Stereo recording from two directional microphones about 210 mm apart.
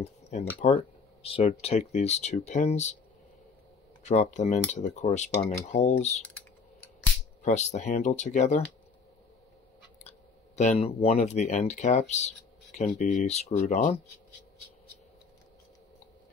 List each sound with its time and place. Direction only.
0.0 s a sound: 30° left (ahead or behind)
1.2 s speech: 30° left (ahead or behind)
4.0 s speech: 35° left (ahead or behind)
7.4 s speech: 35° left (ahead or behind)
10.0 s speech: 30° left (ahead or behind)